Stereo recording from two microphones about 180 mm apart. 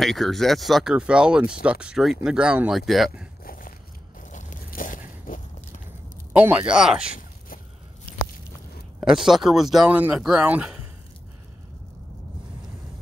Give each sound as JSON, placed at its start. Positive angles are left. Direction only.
{"t": 0.0, "sound": "speech", "side_deg": 0}
{"t": 3.4, "sound": "crushing", "side_deg": 50}
{"t": 4.3, "sound": "biting", "side_deg": 45}
{"t": 6.3, "sound": "speech", "side_deg": -10}
{"t": 7.2, "sound": "a sound", "side_deg": 50}
{"t": 9.0, "sound": "speech", "side_deg": 0}